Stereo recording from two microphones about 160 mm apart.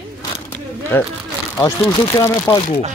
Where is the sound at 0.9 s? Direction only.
10° left (ahead or behind).